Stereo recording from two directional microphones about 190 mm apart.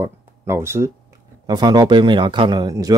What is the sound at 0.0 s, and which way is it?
Speech, 15° right (ahead or behind).